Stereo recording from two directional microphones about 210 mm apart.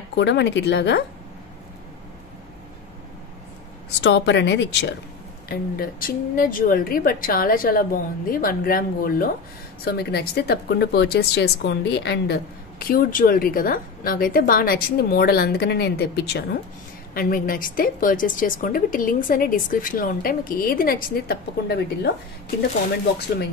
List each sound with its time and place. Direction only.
0.1 s speech: 55° left (ahead or behind)
4.0 s speech: 55° left (ahead or behind)
5.5 s a woman's voice: 45° left (ahead or behind)